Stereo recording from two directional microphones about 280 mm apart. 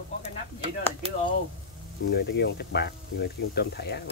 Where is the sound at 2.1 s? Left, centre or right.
Left.